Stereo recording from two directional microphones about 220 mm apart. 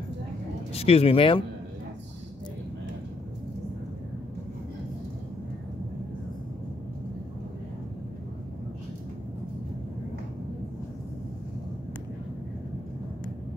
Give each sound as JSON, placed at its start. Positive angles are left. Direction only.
{"t": 0.7, "sound": "speech", "side_deg": 25}